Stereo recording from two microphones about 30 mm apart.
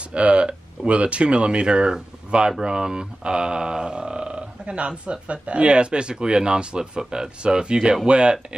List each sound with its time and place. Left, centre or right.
0.1 s speech: right